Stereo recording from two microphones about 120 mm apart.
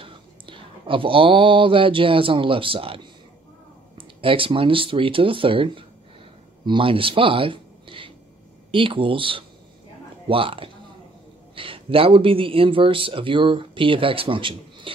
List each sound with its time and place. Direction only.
0.0 s speech: 45° right (ahead or behind)
4.2 s a man's voice: 50° right (ahead or behind)